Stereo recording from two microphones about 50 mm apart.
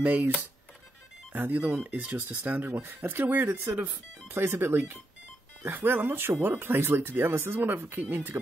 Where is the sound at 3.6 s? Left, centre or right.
Right.